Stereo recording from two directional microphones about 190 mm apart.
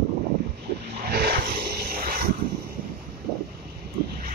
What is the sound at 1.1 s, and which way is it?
Wild animals, 55° right (ahead or behind).